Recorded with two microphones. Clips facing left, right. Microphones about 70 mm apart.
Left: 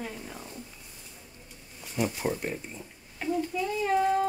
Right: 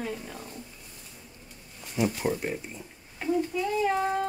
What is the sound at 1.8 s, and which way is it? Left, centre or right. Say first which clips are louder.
Speech: right 2 dB; centre.